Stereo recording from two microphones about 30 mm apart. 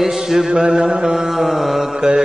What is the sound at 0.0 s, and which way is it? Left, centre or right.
Mantra, centre.